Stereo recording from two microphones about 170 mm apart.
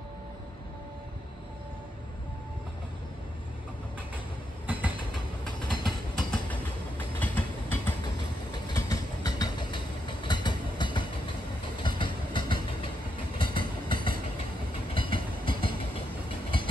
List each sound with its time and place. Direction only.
4.6 s train: 10° right (ahead or behind)
5.4 s train: 5° left (ahead or behind)
8.6 s train: 25° left (ahead or behind)
15.0 s train: 30° left (ahead or behind)